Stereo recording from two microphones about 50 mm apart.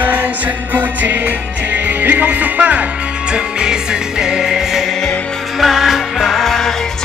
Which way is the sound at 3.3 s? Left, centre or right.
Centre.